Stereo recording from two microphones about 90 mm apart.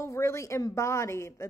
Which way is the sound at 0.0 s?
35° left (ahead or behind).